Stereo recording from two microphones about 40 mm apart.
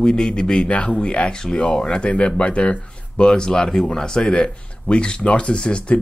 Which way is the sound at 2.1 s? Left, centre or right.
Left.